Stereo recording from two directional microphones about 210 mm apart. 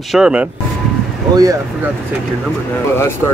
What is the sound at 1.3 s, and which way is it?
Speech, 15° right (ahead or behind).